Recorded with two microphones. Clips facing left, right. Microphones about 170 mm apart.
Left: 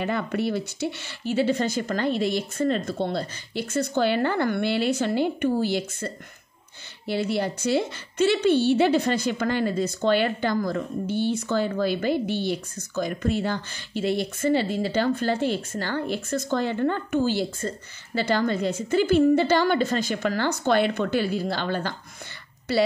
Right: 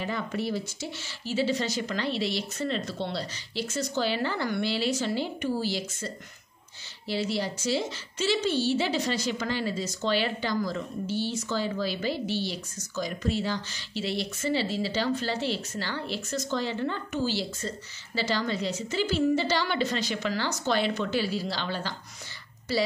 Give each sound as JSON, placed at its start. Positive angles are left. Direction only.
{"t": 0.0, "sound": "a woman's voice", "side_deg": 60}
{"t": 22.7, "sound": "speech", "side_deg": 65}